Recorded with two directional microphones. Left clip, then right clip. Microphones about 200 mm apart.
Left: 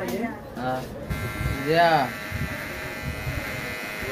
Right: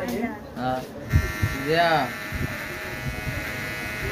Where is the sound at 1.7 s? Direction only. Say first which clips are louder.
Left 2 dB; 15° left (ahead or behind).